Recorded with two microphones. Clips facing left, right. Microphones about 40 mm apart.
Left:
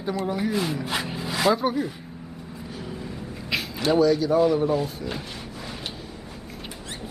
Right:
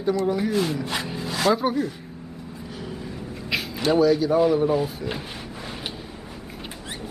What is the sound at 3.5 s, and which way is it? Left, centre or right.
Speech, centre.